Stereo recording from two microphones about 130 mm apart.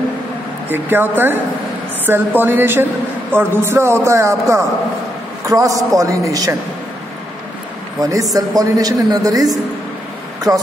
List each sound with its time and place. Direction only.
0.7 s a woman's voice: 15° right (ahead or behind)
8.0 s a man's voice: 25° right (ahead or behind)